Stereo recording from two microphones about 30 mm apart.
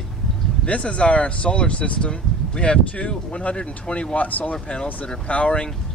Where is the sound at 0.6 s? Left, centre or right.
Left.